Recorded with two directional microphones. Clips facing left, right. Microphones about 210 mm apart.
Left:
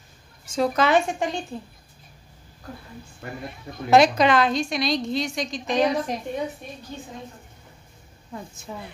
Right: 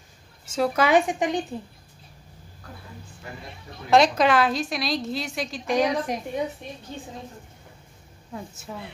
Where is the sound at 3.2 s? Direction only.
60° left (ahead or behind).